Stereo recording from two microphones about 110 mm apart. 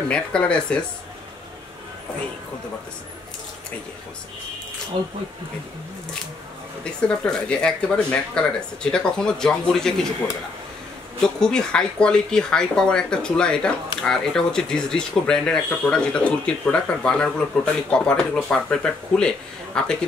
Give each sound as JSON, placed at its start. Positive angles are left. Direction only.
{"t": 0.1, "sound": "speech", "side_deg": 10}
{"t": 4.9, "sound": "speech", "side_deg": -45}
{"t": 6.8, "sound": "speech", "side_deg": 10}
{"t": 11.2, "sound": "speech", "side_deg": 5}